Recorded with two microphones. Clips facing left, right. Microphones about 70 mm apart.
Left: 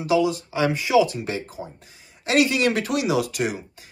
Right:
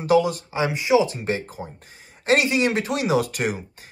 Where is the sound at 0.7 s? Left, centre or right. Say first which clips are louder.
Even; centre.